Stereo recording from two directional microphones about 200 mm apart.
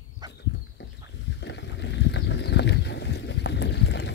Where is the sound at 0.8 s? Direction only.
60° left (ahead or behind).